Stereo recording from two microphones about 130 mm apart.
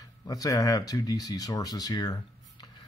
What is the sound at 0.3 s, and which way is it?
Speech, 25° left (ahead or behind).